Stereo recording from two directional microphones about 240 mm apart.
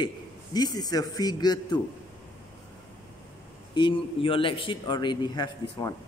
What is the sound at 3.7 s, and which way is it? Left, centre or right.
A man's voice, left.